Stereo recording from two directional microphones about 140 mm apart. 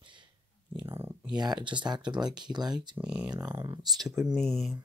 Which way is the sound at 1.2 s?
30° right (ahead or behind).